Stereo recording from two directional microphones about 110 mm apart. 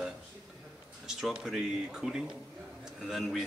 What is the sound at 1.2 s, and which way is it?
Speech, 5° right (ahead or behind).